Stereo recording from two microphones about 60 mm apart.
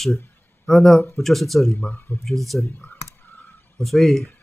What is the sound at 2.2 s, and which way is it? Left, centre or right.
Speech, centre.